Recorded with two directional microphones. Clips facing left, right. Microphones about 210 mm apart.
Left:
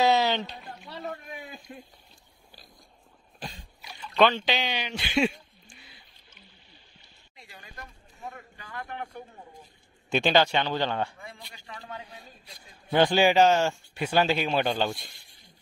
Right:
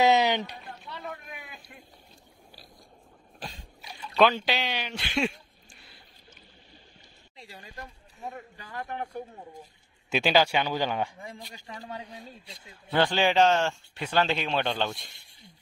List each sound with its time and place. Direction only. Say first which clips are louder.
0.0 s a sound: right 1 dB; 20° right (ahead or behind)
0.8 s boat: left 4 dB; 35° left (ahead or behind)
3.3 s a sound: left 1 dB; centre (ahead or behind)
4.1 s speech: even; 5° right (ahead or behind)
7.3 s a sound: right 4 dB; 30° right (ahead or behind)
8.3 s speech: right 2 dB; 30° right (ahead or behind)
10.0 s speech: left 1 dB; 5° right (ahead or behind)
11.2 s speech: right 3 dB; 40° right (ahead or behind)
12.3 s a man's voice: right 4 dB; 25° right (ahead or behind)
12.9 s speech: left 3 dB; 15° left (ahead or behind)